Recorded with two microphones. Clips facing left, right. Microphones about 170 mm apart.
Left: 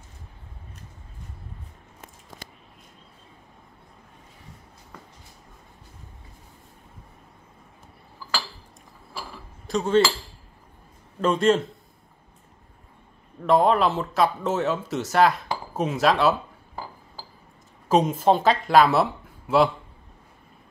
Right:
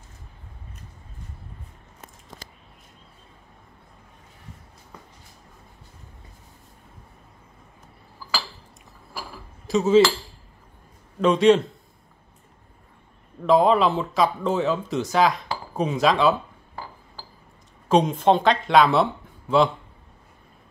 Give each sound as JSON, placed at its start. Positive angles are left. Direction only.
{"t": 9.7, "sound": "speech", "side_deg": 0}
{"t": 11.1, "sound": "speech", "side_deg": 0}
{"t": 13.4, "sound": "speech", "side_deg": 0}